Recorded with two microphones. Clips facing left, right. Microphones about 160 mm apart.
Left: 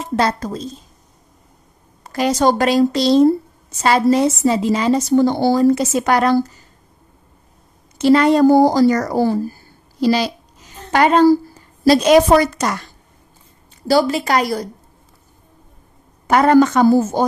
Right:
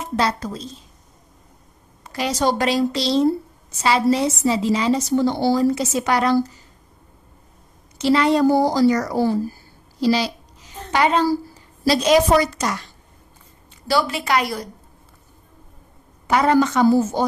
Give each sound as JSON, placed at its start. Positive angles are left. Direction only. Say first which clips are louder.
{"t": 0.1, "sound": "a woman's voice", "louder": "left 4 dB", "side_deg": 50}
{"t": 2.0, "sound": "a woman's voice", "louder": "left 5 dB", "side_deg": 45}
{"t": 8.0, "sound": "a woman's voice", "louder": "left 5 dB", "side_deg": 50}
{"t": 13.8, "sound": "a woman's voice", "louder": "left 5 dB", "side_deg": 40}
{"t": 16.3, "sound": "a woman's voice", "louder": "left 5 dB", "side_deg": 50}